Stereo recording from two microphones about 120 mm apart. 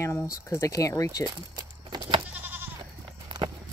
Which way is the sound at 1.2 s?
40° right (ahead or behind).